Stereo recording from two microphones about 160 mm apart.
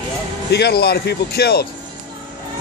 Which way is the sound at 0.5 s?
85° left.